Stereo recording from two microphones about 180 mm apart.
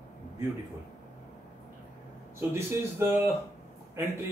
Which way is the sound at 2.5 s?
15° right (ahead or behind).